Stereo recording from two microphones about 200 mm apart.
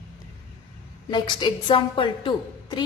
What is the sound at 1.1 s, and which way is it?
A woman's voice, 20° left (ahead or behind).